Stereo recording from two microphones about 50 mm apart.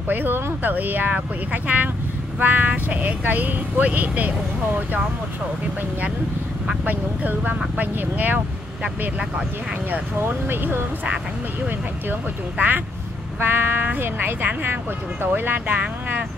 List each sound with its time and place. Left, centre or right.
0.1 s speech: right
6.9 s speech: right
10.1 s speech: right
12.5 s speech: right